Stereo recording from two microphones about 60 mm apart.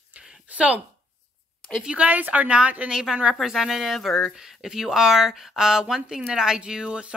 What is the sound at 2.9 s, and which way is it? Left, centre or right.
Speech, centre.